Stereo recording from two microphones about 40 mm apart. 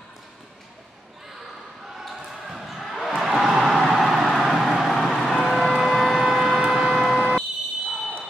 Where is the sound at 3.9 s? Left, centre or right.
Centre.